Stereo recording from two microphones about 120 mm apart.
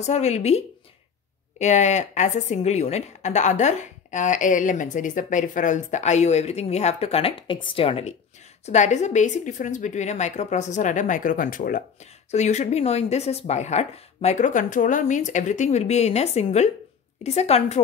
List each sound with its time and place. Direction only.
0.0 s a woman's voice: 70° left (ahead or behind)
8.6 s a woman's voice: 75° left (ahead or behind)
12.3 s a woman's voice: 70° left (ahead or behind)